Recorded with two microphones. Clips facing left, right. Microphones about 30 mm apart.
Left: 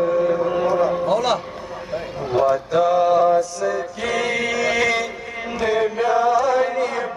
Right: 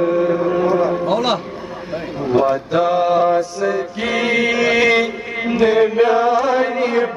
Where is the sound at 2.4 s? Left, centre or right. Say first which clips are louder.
Left 3 dB; right.